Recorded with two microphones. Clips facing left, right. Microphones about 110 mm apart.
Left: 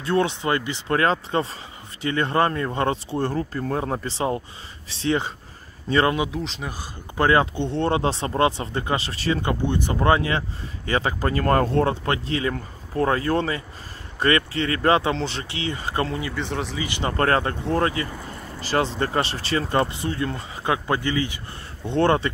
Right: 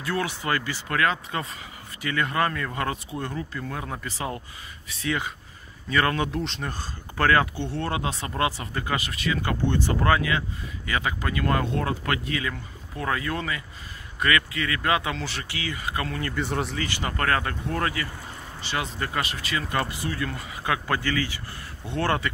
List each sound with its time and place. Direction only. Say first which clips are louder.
0.0 s speech: left 6 dB; 25° left (ahead or behind)
6.1 s speech: left 1 dB; 5° left (ahead or behind); by 16.2 s 30° left (ahead or behind)
16.3 s speech: even; centre (ahead or behind)
16.7 s speech: left 1 dB; 15° left (ahead or behind)
17.0 s speech: left 5 dB; 30° left (ahead or behind)